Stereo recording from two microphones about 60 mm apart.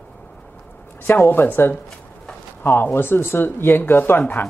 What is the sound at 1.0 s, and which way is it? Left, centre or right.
Speech, left.